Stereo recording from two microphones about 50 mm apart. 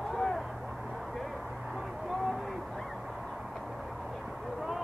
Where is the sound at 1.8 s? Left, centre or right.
Centre.